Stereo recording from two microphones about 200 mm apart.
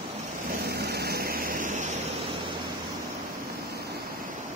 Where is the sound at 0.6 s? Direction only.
55° right (ahead or behind).